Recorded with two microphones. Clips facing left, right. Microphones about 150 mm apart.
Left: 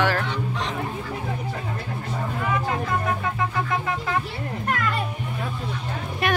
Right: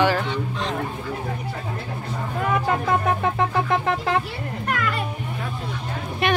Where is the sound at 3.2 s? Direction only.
65° right (ahead or behind).